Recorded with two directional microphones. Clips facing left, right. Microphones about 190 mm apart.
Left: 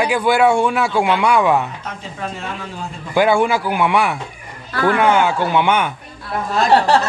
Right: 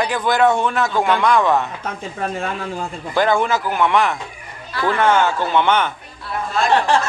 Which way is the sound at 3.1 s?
10° left (ahead or behind).